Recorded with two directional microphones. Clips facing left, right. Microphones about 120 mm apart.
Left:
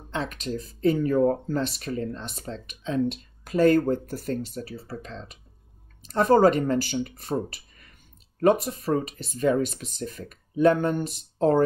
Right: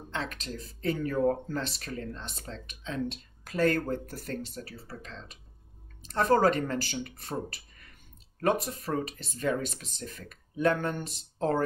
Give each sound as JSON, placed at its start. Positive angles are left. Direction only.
{"t": 0.1, "sound": "speech", "side_deg": 15}